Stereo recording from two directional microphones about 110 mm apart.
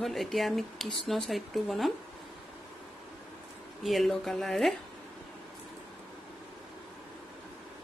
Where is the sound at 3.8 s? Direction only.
Centre (ahead or behind).